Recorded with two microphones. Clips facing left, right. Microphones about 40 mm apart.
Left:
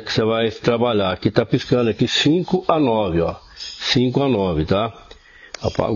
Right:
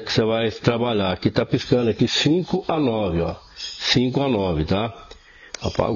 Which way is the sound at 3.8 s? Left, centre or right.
Centre.